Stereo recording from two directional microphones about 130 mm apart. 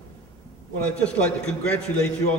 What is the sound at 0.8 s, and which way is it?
Speech, 10° left (ahead or behind).